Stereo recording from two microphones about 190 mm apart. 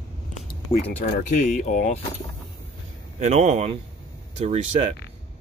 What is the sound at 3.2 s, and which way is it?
Speech, 35° right (ahead or behind).